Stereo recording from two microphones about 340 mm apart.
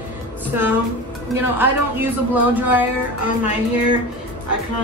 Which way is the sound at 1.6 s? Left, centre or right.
Centre.